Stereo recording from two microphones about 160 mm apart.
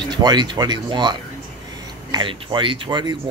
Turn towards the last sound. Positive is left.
turn(degrees=-30)  # may be behind; listen again after turning